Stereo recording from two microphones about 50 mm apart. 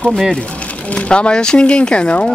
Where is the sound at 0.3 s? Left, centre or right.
Left.